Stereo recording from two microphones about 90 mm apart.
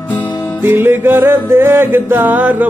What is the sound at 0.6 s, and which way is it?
Music, 25° right (ahead or behind).